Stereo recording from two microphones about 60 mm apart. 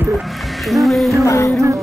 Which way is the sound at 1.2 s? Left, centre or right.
Left.